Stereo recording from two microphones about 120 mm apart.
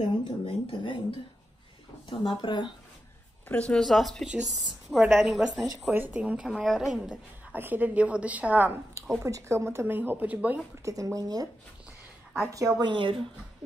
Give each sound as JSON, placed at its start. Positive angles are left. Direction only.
{"t": 0.0, "sound": "speech", "side_deg": 45}
{"t": 2.0, "sound": "speech", "side_deg": 40}
{"t": 3.4, "sound": "a woman's voice", "side_deg": 10}
{"t": 5.9, "sound": "a woman's voice", "side_deg": -15}
{"t": 7.5, "sound": "a woman's voice", "side_deg": -15}
{"t": 10.9, "sound": "speech", "side_deg": -30}
{"t": 12.9, "sound": "speech", "side_deg": -45}